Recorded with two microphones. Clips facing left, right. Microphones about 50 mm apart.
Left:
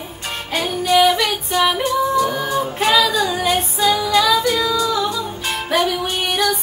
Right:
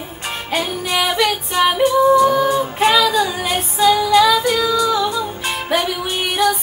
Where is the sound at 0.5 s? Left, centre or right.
Centre.